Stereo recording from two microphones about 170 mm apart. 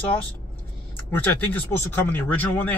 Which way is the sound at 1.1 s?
10° left (ahead or behind).